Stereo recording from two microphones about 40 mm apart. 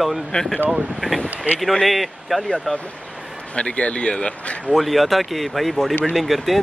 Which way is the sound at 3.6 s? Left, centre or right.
Left.